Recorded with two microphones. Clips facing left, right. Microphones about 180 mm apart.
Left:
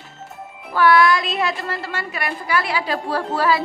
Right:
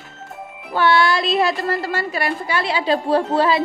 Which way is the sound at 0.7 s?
25° right (ahead or behind).